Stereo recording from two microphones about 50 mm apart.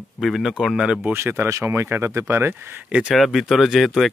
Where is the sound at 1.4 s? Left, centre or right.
Right.